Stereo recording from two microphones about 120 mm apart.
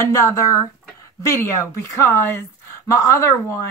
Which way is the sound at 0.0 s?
25° left (ahead or behind).